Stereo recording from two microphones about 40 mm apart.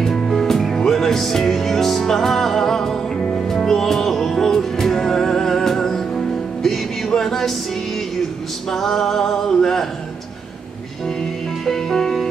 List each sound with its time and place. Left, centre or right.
0.3 s music: centre
3.2 s music: left
3.4 s music: centre
8.6 s a sound: centre
11.6 s music: centre